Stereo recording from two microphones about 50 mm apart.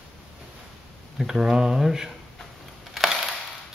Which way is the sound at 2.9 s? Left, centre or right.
Centre.